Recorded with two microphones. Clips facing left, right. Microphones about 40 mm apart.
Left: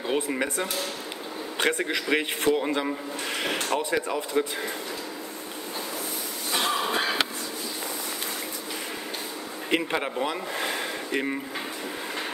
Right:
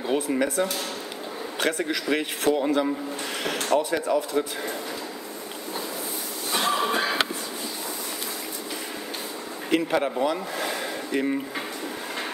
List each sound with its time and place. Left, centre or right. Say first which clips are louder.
0.1 s speech: right 3 dB; centre
1.8 s speech: even; left
6.5 s a sound: right 2 dB; centre
9.7 s speech: right 3 dB; centre